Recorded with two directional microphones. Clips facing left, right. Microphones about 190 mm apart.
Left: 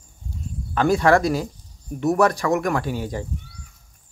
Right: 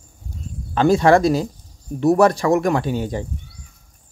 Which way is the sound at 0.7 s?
25° right (ahead or behind).